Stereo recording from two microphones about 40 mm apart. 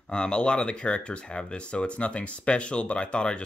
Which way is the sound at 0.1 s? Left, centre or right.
Left.